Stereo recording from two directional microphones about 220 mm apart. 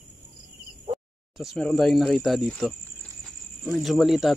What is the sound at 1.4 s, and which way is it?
Speech, centre (ahead or behind).